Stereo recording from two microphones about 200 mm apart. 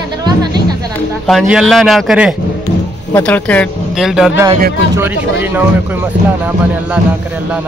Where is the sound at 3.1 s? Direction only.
10° left (ahead or behind).